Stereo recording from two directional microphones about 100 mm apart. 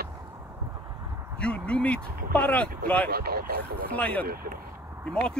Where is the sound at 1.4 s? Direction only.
10° left (ahead or behind).